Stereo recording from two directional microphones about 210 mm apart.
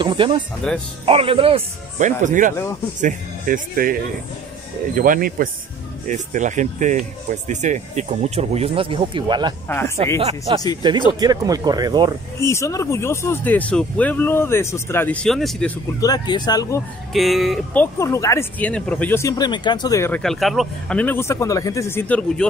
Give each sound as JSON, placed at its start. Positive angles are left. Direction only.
{"t": 0.0, "sound": "speech", "side_deg": -25}
{"t": 9.7, "sound": "speech", "side_deg": 10}
{"t": 10.1, "sound": "speech", "side_deg": -25}
{"t": 12.4, "sound": "speech", "side_deg": 15}
{"t": 16.0, "sound": "speech", "side_deg": 20}
{"t": 17.1, "sound": "speech", "side_deg": 0}
{"t": 17.9, "sound": "speech", "side_deg": 15}
{"t": 20.2, "sound": "speech", "side_deg": 0}